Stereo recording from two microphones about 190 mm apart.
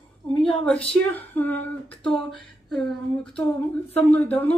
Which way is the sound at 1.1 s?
10° left (ahead or behind).